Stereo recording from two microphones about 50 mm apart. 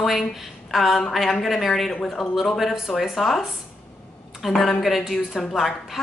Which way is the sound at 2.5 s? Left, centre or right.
Centre.